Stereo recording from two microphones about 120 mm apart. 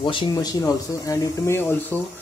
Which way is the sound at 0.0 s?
45° left (ahead or behind).